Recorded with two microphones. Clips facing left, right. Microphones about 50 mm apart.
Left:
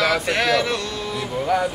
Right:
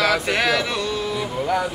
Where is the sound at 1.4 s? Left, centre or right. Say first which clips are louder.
Left 2 dB; centre.